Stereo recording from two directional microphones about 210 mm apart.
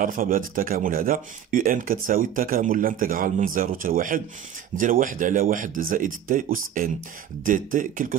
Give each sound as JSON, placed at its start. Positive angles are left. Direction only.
{"t": 0.0, "sound": "speech", "side_deg": -40}